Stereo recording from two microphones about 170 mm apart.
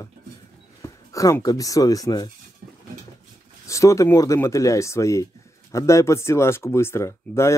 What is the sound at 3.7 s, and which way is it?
Speech, 20° left (ahead or behind).